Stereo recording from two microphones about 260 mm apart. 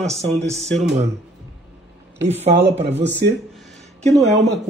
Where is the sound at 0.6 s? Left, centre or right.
Right.